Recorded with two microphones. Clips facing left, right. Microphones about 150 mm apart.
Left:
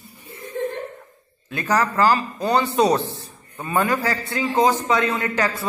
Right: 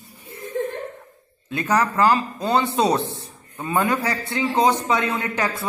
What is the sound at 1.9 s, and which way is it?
Speech, 20° right (ahead or behind).